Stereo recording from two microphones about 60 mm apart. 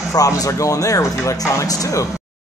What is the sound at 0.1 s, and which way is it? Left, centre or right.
Speech, left.